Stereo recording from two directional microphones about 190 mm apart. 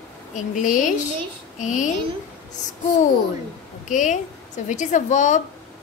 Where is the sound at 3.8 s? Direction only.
40° left (ahead or behind).